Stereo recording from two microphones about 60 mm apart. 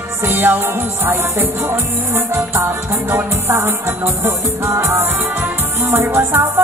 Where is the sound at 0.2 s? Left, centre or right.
Right.